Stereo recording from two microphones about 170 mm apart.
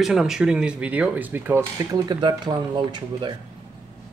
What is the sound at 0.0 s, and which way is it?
A man's voice, centre (ahead or behind).